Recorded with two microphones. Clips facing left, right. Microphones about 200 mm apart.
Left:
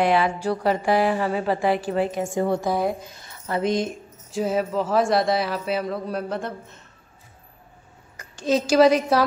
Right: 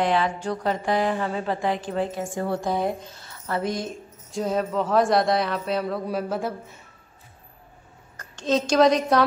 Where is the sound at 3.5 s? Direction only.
20° left (ahead or behind).